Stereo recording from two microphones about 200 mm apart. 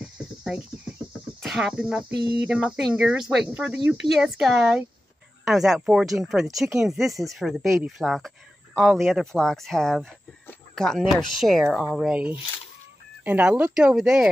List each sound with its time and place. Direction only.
0.0 s cricket: 5° right (ahead or behind)
1.4 s speech: centre (ahead or behind)